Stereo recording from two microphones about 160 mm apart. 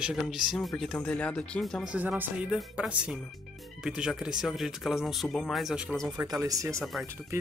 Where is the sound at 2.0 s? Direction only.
10° right (ahead or behind).